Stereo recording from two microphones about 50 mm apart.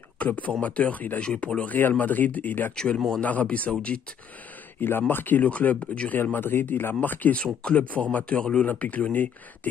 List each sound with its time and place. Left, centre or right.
0.2 s speech: left
1.8 s speech: left
2.7 s speech: centre
3.2 s speech: left
4.7 s speech: left
6.1 s speech: left
7.3 s speech: left
8.6 s speech: left